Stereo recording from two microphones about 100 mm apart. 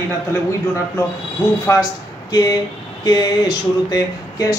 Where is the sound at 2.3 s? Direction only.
40° left (ahead or behind).